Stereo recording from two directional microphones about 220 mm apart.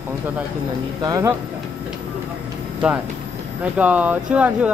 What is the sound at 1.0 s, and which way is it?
Speech, 15° right (ahead or behind).